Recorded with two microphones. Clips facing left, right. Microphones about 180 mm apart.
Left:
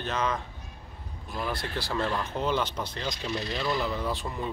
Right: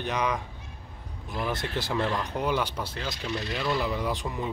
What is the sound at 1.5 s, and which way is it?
Speech, 20° right (ahead or behind).